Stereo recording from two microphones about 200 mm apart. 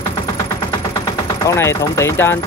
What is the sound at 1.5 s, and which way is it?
Speech, 15° left (ahead or behind).